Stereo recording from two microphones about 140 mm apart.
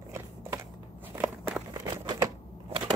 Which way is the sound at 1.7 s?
30° right (ahead or behind).